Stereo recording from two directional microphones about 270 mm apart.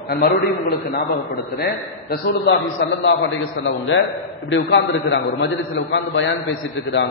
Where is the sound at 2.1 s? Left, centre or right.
Left.